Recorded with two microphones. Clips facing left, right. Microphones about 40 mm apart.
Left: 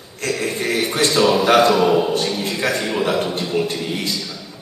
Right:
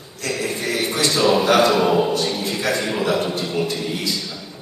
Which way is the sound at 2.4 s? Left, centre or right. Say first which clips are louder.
Left 1 dB; left.